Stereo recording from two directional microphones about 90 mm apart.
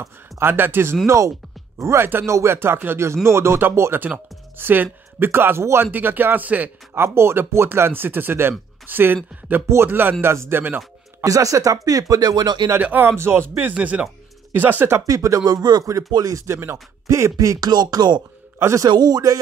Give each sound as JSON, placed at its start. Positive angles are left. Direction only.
{"t": 0.0, "sound": "a man's voice", "side_deg": -25}
{"t": 11.2, "sound": "speech", "side_deg": -40}
{"t": 12.7, "sound": "a man's voice", "side_deg": -20}
{"t": 15.0, "sound": "speech", "side_deg": -40}
{"t": 18.6, "sound": "a man's voice", "side_deg": -30}
{"t": 18.9, "sound": "speech", "side_deg": -50}